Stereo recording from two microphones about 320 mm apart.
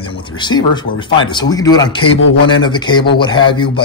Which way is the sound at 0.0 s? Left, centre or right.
Centre.